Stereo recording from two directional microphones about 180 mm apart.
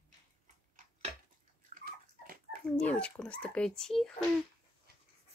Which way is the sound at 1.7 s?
55° right (ahead or behind).